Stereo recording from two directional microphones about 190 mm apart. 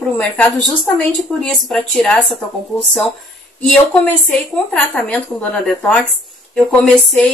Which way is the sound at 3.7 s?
5° left (ahead or behind).